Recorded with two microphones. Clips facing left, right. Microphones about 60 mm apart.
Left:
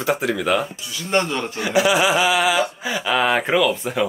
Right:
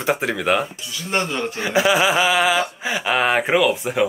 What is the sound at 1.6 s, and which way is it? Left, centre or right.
Speech, right.